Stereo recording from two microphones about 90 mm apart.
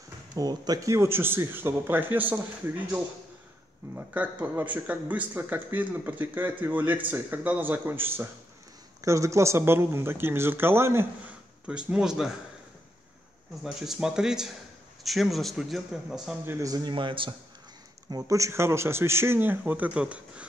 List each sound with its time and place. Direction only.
0.3 s speech: 45° right (ahead or behind); by 8.3 s 25° right (ahead or behind)
9.0 s speech: 35° right (ahead or behind)
11.2 s speech: 15° right (ahead or behind)
13.7 s a man's voice: 5° right (ahead or behind)
16.4 s speech: 40° right (ahead or behind)
16.9 s a man's voice: 70° right (ahead or behind)
18.1 s speech: 35° right (ahead or behind); by 20.4 s 15° right (ahead or behind)